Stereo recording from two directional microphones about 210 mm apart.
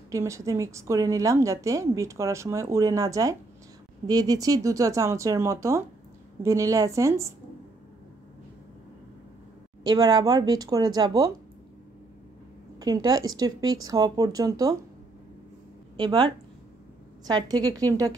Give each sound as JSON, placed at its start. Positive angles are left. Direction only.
{"t": 0.1, "sound": "a woman's voice", "side_deg": -15}
{"t": 9.8, "sound": "speech", "side_deg": -20}
{"t": 12.8, "sound": "a woman's voice", "side_deg": -15}
{"t": 16.0, "sound": "a woman's voice", "side_deg": -20}